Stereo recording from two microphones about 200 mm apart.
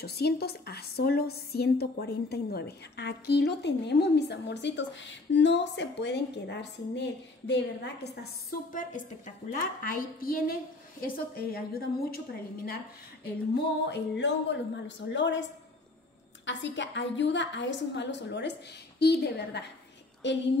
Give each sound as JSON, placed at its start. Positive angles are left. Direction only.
{"t": 0.0, "sound": "a woman's voice", "side_deg": 55}
{"t": 8.7, "sound": "a woman's voice", "side_deg": 40}
{"t": 13.8, "sound": "a woman's voice", "side_deg": 60}